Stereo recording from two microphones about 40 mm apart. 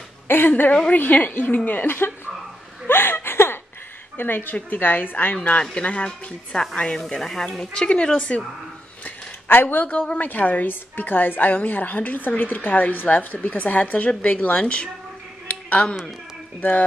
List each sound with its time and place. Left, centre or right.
0.3 s a sound: left
0.8 s a woman's voice: left
2.9 s a sound: left
4.2 s a woman's voice: left
6.5 s speech: centre
7.7 s speech: left
9.5 s a woman's voice: left
9.8 s a woman's voice: left
10.2 s a woman's voice: left